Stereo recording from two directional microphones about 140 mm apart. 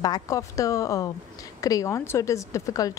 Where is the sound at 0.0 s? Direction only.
25° left (ahead or behind).